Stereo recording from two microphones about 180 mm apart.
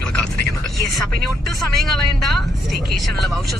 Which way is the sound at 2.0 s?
Centre (ahead or behind).